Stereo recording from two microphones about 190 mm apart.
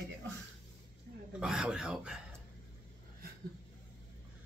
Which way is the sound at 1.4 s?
5° right (ahead or behind).